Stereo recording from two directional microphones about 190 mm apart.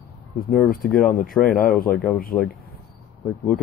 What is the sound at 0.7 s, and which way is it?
Speech, 50° left (ahead or behind).